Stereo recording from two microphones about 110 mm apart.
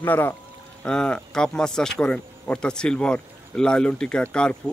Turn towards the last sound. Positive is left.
turn(degrees=10)  # may be behind; listen again after turning